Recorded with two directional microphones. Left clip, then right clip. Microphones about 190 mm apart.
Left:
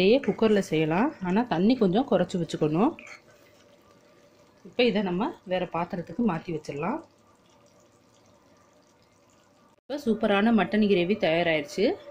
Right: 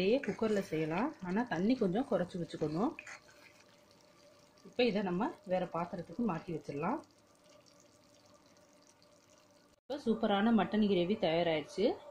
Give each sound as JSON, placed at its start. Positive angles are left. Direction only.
{"t": 0.0, "sound": "speech", "side_deg": 25}
{"t": 4.7, "sound": "speech", "side_deg": 15}
{"t": 9.8, "sound": "speech", "side_deg": 10}